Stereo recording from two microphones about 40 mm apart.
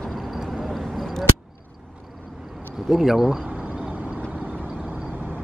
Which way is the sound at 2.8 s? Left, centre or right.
Centre.